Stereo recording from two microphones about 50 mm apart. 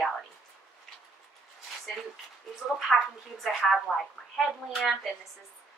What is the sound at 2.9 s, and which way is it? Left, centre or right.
Speech, centre.